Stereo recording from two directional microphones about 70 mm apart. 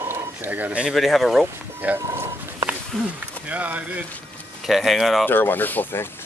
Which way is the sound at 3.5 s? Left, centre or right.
Right.